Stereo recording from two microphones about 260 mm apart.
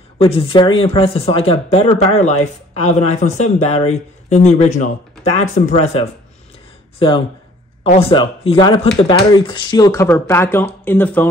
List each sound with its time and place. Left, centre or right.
0.2 s speech: left
7.8 s speech: left